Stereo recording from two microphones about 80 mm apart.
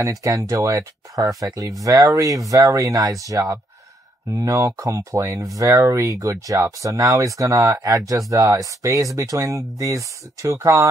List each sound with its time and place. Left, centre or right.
0.0 s speech: right